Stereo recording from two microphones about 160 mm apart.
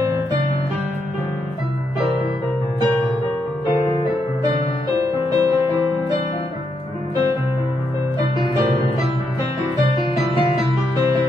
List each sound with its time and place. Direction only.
5.0 s music: 20° right (ahead or behind)